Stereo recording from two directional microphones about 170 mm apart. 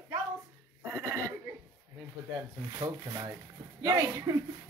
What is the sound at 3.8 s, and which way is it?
Speech, 20° right (ahead or behind).